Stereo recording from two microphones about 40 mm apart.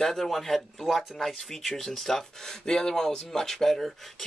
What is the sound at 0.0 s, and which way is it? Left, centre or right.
A man's voice, centre.